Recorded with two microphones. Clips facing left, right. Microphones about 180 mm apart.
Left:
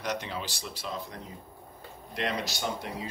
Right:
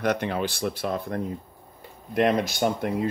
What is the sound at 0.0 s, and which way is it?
Speech, 55° right (ahead or behind).